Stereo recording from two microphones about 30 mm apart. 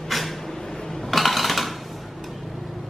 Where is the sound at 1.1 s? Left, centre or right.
Centre.